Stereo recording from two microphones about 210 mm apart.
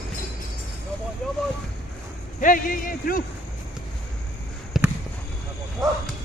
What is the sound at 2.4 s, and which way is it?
Speech, 40° left (ahead or behind).